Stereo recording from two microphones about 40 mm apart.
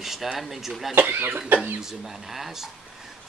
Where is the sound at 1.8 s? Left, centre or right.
Centre.